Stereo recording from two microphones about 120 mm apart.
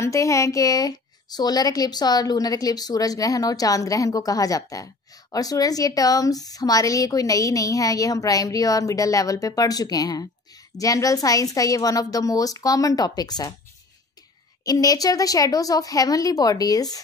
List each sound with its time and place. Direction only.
0.0 s a woman's voice: 25° left (ahead or behind)
14.6 s a woman's voice: 30° left (ahead or behind)